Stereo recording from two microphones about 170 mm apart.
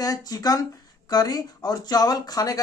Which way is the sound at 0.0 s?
20° left (ahead or behind).